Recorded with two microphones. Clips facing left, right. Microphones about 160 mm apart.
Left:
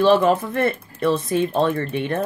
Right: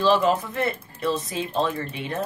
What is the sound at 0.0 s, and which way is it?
Speech, 55° left (ahead or behind).